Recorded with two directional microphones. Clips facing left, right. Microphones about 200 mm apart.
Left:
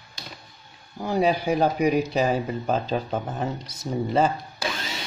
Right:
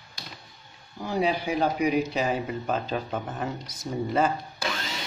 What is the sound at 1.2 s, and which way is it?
Speech, 40° left (ahead or behind).